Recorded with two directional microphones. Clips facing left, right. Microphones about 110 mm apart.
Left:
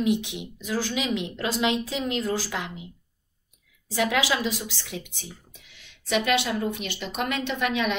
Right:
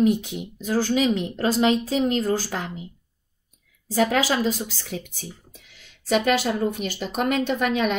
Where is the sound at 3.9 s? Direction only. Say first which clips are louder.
Right 3 dB; 40° right (ahead or behind).